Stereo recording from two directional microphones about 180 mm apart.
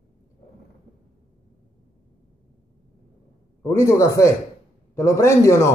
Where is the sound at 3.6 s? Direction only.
15° left (ahead or behind).